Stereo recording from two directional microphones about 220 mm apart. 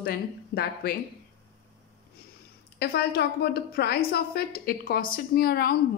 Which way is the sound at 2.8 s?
45° left (ahead or behind).